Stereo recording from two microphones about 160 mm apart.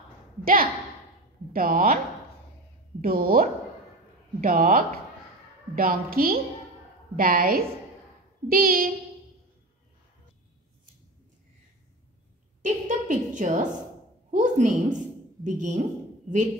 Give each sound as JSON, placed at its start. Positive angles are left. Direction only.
{"t": 1.5, "sound": "speech", "side_deg": -60}
{"t": 3.0, "sound": "a woman's voice", "side_deg": -70}
{"t": 12.6, "sound": "a woman's voice", "side_deg": -50}